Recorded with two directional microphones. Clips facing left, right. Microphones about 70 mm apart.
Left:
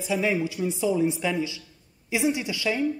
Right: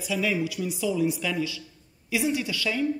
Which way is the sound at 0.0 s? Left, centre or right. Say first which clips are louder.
Left 2 dB; left.